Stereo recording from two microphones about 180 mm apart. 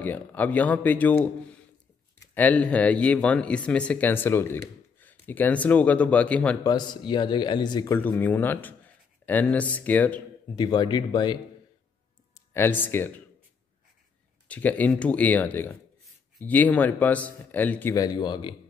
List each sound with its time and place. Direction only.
0.0 s speech: 10° left (ahead or behind)
6.6 s speech: 25° left (ahead or behind)
10.5 s speech: 25° left (ahead or behind)
12.4 s speech: 10° left (ahead or behind)
14.5 s speech: 10° left (ahead or behind)
17.9 s speech: 20° left (ahead or behind)